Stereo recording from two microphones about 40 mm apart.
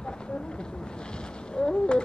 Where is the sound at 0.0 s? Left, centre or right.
Left.